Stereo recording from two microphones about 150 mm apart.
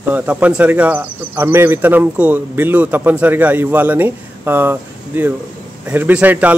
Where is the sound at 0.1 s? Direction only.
10° right (ahead or behind).